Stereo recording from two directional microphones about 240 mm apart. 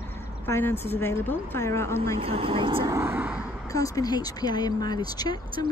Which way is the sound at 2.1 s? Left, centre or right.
Right.